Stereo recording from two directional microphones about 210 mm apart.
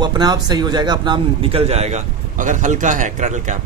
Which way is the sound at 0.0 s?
20° right (ahead or behind).